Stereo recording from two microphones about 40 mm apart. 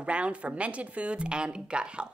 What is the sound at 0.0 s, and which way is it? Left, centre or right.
A woman's voice, right.